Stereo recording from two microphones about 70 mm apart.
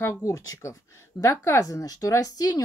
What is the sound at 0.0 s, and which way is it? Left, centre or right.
Speech, left.